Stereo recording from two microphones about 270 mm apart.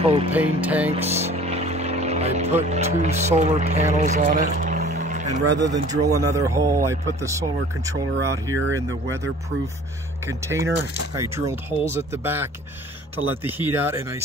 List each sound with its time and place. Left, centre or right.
0.0 s vehicle: right
0.3 s speech: centre
0.8 s speech: right
5.6 s a man's voice: centre
10.2 s a man's voice: centre